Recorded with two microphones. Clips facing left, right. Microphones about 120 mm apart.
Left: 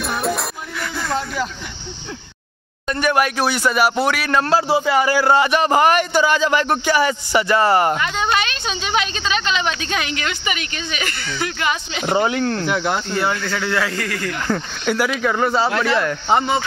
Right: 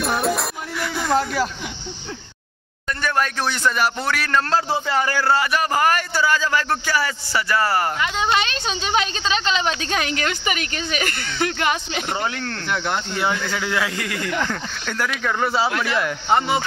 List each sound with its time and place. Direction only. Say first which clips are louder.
0.0 s music: right 1 dB; centre (ahead or behind)
0.9 s speech: right 3 dB; 10° right (ahead or behind)
2.9 s speech: left 5 dB; 15° left (ahead or behind)
8.0 s a woman's voice: left 1 dB; 20° right (ahead or behind); by 12.0 s 45° right (ahead or behind)
12.1 s speech: left 10 dB; 20° left (ahead or behind)
12.6 s speech: left 4 dB; 5° left (ahead or behind)
13.1 s speech: left 2 dB; 15° right (ahead or behind)
14.5 s speech: left 7 dB; 10° left (ahead or behind)